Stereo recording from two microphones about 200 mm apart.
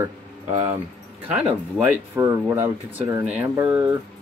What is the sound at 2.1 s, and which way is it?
Speech, 10° right (ahead or behind).